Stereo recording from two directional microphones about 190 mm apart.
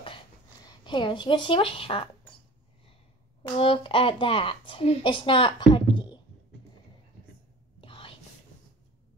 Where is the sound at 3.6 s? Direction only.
30° left (ahead or behind).